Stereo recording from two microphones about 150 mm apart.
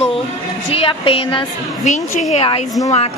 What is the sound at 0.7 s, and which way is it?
A woman's voice, 40° left (ahead or behind).